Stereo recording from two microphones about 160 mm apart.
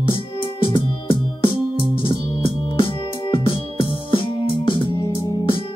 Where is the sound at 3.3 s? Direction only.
35° left (ahead or behind).